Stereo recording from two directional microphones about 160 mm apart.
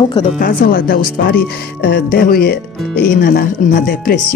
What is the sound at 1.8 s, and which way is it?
Speech, 80° left.